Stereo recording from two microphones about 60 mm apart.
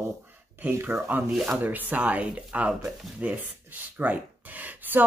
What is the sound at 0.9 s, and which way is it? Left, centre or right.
Speech, centre.